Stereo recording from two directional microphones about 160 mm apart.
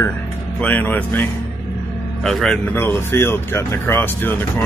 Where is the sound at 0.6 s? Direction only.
10° left (ahead or behind).